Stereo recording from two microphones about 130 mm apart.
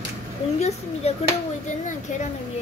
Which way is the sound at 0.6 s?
55° left (ahead or behind).